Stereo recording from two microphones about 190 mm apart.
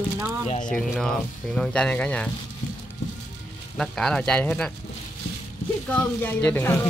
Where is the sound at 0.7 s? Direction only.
5° left (ahead or behind).